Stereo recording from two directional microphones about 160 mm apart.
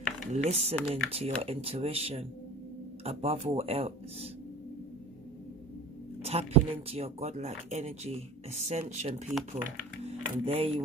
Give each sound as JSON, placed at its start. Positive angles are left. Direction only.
{"t": 0.3, "sound": "speech", "side_deg": -40}
{"t": 6.2, "sound": "speech", "side_deg": -40}
{"t": 10.0, "sound": "music", "side_deg": -40}